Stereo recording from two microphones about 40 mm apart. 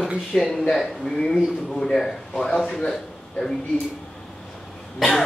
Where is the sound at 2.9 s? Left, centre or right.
Centre.